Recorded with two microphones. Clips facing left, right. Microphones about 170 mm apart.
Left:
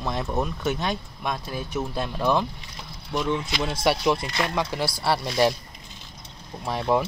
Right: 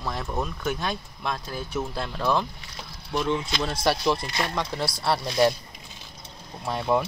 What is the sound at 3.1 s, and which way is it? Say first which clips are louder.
Speech: even; 5° left (ahead or behind).